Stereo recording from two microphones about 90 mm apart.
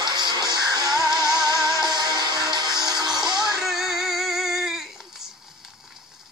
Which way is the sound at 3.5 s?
5° right (ahead or behind).